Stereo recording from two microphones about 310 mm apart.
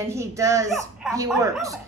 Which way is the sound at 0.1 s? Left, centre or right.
Centre.